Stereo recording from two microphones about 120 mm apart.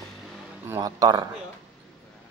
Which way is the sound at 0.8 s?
35° right (ahead or behind).